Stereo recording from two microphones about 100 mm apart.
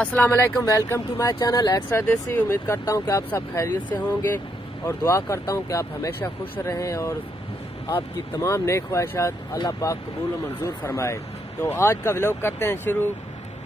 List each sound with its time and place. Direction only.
0.0 s speech: 15° left (ahead or behind); by 1.7 s 40° left (ahead or behind)
1.9 s speech: 25° left (ahead or behind)
6.7 s speech: 30° left (ahead or behind)